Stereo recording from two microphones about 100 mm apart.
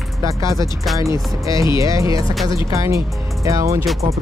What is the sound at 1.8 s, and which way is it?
Speech, 35° right (ahead or behind).